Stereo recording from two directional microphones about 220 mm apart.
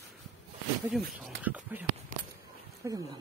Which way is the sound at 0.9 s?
5° right (ahead or behind).